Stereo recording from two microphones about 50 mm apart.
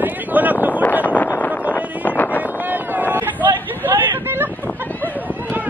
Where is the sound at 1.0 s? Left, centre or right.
Left.